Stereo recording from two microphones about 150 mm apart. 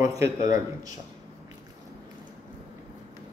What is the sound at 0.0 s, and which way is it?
Speech, 20° right (ahead or behind).